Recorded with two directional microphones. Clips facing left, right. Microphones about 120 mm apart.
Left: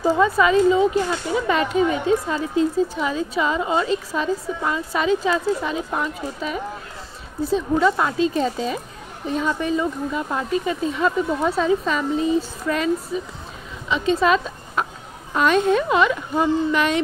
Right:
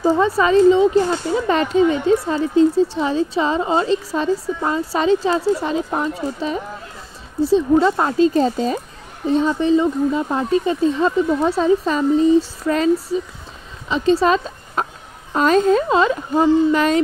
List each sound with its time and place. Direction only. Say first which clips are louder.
0.0 s speech: right 1 dB; 25° right (ahead or behind)